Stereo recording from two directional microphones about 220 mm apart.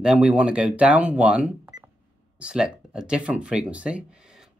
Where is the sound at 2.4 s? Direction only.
5° right (ahead or behind).